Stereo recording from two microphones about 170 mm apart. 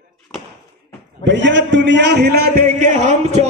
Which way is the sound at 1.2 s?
90° right.